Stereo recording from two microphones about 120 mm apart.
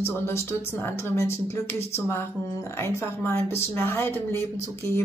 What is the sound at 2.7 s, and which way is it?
A woman's voice, 20° left (ahead or behind).